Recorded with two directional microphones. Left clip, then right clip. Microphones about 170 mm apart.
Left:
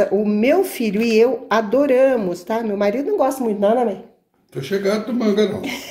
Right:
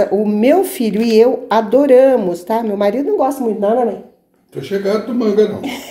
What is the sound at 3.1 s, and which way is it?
Speech, 10° left (ahead or behind).